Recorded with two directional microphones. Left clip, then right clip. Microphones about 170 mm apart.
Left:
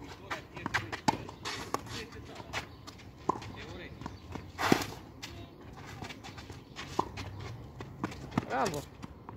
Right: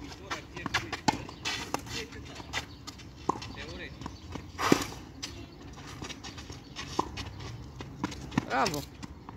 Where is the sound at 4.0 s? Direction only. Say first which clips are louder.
Right 2 dB; 20° left (ahead or behind).